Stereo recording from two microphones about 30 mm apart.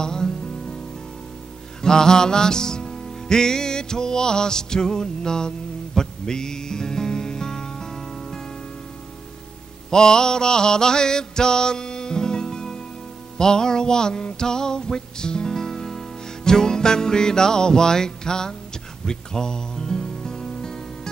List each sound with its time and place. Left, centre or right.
0.0 s music: centre
1.8 s music: left
9.8 s mantra: left
13.4 s music: left